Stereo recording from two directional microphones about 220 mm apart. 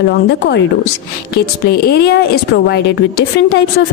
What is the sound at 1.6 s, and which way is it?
A woman's voice, 45° left (ahead or behind).